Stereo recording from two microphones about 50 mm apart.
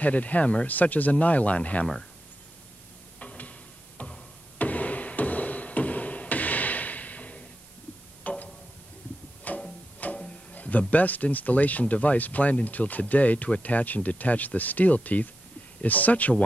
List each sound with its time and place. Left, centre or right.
0.0 s speech: left
3.2 s tick-tock: left
4.0 s music: left
8.2 s tick-tock: left
9.5 s music: left
10.1 s speech: left